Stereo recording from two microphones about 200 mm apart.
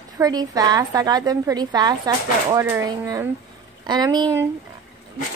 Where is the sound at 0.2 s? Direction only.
20° right (ahead or behind).